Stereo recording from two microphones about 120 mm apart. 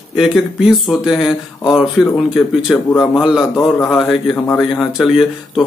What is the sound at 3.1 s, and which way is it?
Speech, 5° right (ahead or behind).